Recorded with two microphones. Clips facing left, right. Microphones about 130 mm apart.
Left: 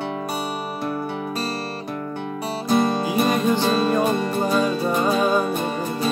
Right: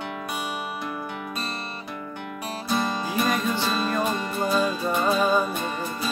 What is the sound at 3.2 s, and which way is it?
Music, 40° left (ahead or behind).